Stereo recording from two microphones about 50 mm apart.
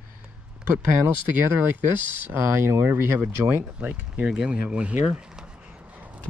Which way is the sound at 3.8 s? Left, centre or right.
Right.